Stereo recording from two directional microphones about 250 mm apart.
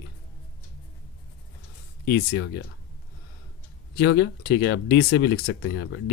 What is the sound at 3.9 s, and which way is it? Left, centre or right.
Speech, left.